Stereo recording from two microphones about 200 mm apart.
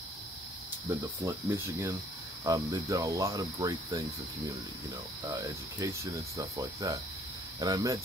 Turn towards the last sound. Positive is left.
turn(degrees=-20)  # may be behind; listen again after turning